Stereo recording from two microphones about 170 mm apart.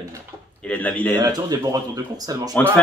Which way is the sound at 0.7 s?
10° left (ahead or behind).